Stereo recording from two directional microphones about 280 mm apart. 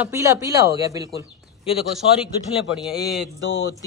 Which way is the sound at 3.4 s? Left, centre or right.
Left.